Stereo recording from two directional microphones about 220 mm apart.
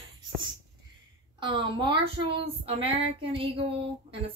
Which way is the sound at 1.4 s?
20° right (ahead or behind).